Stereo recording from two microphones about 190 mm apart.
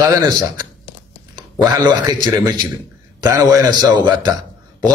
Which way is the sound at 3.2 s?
20° right (ahead or behind).